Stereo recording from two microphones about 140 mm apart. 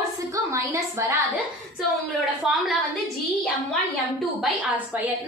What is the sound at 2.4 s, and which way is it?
Speech, 5° right (ahead or behind).